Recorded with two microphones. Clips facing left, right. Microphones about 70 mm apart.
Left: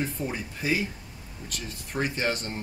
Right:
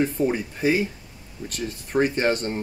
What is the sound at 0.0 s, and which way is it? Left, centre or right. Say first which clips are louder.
Speech: right 9 dB; right.